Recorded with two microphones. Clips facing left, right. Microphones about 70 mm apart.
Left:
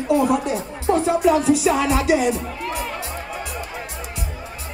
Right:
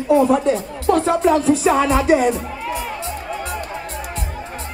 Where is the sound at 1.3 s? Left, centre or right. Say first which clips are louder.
Right 1 dB; centre.